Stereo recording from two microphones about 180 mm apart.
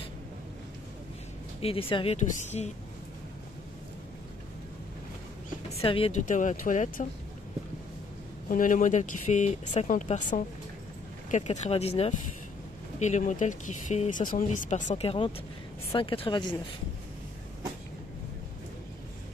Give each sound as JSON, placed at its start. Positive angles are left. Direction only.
{"t": 1.6, "sound": "speech", "side_deg": 30}
{"t": 5.7, "sound": "speech", "side_deg": 30}
{"t": 6.2, "sound": "speech", "side_deg": 45}
{"t": 8.5, "sound": "a woman's voice", "side_deg": 45}